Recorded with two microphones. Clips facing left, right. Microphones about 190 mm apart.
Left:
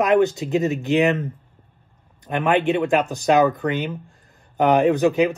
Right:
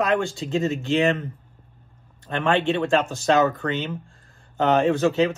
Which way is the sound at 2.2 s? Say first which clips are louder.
Left 2 dB; 15° left (ahead or behind).